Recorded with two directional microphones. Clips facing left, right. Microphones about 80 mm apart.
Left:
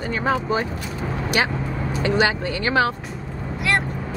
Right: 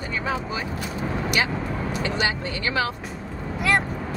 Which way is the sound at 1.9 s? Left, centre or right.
Left.